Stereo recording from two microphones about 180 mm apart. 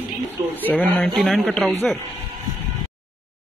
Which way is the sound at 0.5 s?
10° left (ahead or behind).